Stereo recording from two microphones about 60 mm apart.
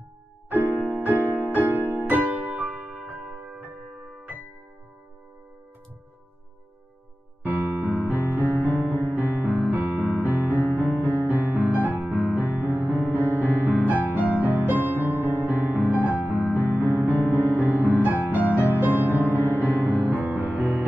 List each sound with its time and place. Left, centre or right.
0.5 s music: right
7.4 s keyboard: right
8.5 s music: left
9.0 s music: right
10.6 s music: left
11.1 s music: right
17.2 s music: left
17.5 s music: right
20.3 s music: left